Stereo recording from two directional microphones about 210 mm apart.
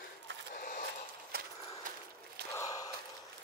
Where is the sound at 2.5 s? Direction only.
15° left (ahead or behind).